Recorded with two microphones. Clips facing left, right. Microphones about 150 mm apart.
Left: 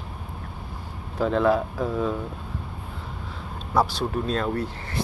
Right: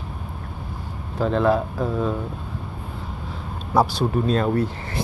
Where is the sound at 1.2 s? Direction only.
5° left (ahead or behind).